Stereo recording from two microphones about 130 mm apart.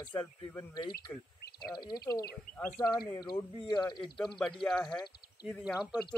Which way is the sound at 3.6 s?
30° left (ahead or behind).